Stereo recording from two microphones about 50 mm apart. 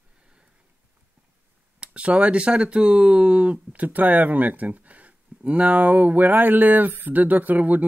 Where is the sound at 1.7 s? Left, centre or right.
Right.